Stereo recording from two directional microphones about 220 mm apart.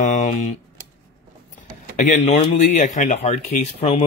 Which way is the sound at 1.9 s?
35° left (ahead or behind).